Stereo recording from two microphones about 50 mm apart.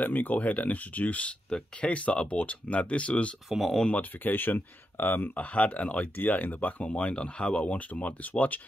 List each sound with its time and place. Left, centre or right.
0.0 s speech: left
3.4 s speech: centre
3.9 s speech: left